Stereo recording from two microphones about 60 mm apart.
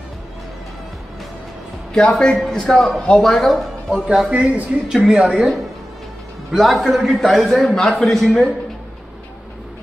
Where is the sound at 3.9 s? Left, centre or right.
Centre.